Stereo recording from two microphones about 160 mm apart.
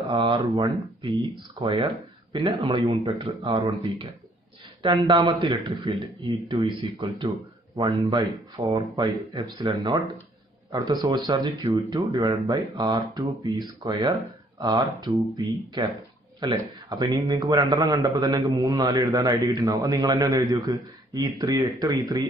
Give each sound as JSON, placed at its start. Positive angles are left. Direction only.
{"t": 0.1, "sound": "a man's voice", "side_deg": -25}